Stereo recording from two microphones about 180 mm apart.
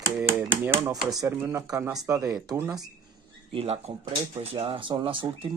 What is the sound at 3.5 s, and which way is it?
Speech, 35° right (ahead or behind).